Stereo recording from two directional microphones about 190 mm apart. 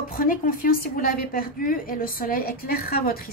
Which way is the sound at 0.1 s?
45° left (ahead or behind).